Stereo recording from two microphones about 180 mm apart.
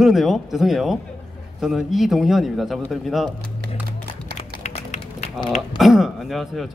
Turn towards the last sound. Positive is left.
turn(degrees=0)  # may be behind; listen again after turning